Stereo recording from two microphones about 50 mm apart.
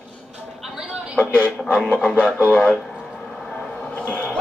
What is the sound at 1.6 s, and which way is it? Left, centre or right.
Speech, left.